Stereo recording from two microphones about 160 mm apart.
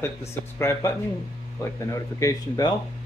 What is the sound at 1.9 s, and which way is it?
Speech, 20° left (ahead or behind).